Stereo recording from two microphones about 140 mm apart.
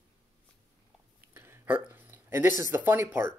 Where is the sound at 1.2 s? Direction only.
15° right (ahead or behind).